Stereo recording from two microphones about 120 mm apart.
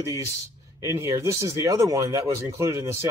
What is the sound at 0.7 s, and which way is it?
Speech, 25° right (ahead or behind).